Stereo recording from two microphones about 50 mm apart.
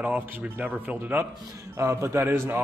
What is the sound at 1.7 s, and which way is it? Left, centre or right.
Speech, right.